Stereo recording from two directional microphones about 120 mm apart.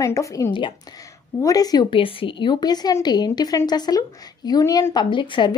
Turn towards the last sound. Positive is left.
turn(degrees=40)  # may be behind; listen again after turning